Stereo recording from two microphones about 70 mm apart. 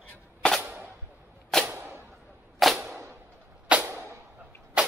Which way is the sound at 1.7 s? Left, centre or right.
Right.